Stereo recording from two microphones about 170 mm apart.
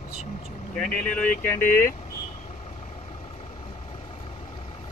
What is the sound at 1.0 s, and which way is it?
Speech, 10° left (ahead or behind).